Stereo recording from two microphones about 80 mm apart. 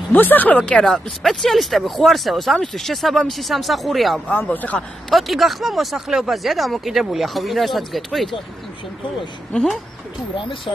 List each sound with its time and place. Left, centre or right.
0.1 s speech: left; by 4.2 s centre
4.3 s speech: centre
5.1 s speech: centre
9.5 s speech: centre